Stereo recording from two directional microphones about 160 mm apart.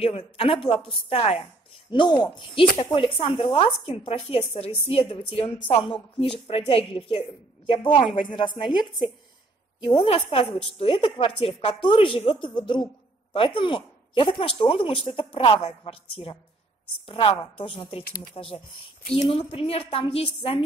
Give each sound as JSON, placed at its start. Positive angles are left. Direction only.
{"t": 0.0, "sound": "speech", "side_deg": 35}
{"t": 1.9, "sound": "speech", "side_deg": 30}
{"t": 9.8, "sound": "speech", "side_deg": 40}
{"t": 18.0, "sound": "speech", "side_deg": 65}
{"t": 18.3, "sound": "speech", "side_deg": 35}